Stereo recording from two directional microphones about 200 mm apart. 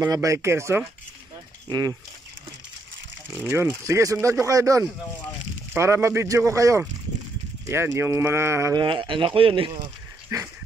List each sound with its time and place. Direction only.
0.0 s speech: 15° right (ahead or behind)
3.3 s speech: 10° right (ahead or behind)